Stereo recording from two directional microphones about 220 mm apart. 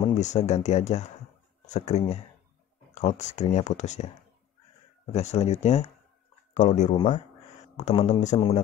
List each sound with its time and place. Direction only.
0.0 s speech: 30° left (ahead or behind)
5.1 s speech: 30° left (ahead or behind)